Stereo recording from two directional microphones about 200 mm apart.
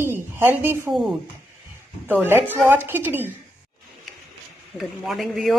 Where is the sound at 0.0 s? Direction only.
10° right (ahead or behind).